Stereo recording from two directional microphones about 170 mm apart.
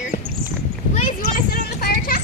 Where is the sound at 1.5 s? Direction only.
60° left (ahead or behind).